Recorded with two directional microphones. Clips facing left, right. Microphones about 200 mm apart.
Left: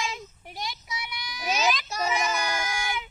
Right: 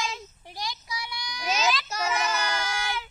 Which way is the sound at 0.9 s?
20° left (ahead or behind).